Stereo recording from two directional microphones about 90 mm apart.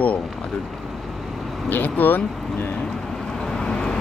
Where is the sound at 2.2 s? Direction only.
5° left (ahead or behind).